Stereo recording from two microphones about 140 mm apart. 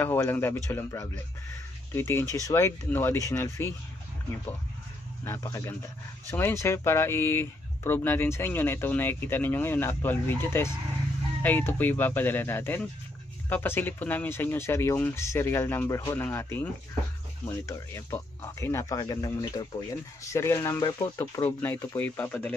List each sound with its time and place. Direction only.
0.0 s speech: 15° left (ahead or behind)
5.2 s speech: 20° left (ahead or behind)